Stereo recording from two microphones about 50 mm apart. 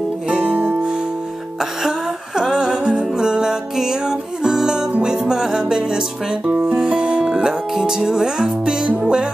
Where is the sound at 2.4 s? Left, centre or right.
Centre.